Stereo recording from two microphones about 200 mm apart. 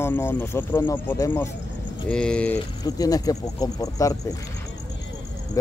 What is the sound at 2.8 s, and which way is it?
Speech, 20° left (ahead or behind).